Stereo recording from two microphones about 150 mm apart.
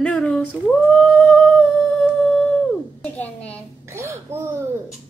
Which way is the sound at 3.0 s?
10° left (ahead or behind).